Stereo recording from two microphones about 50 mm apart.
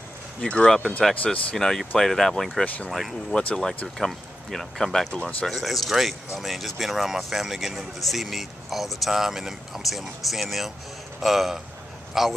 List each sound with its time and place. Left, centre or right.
0.4 s speech: left
0.7 s speech: centre
5.1 s speech: left
5.5 s speech: centre